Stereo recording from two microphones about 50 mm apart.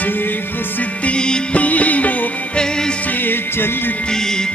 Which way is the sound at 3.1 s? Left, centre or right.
Left.